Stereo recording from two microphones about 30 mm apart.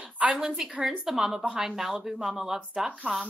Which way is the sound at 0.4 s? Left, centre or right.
Centre.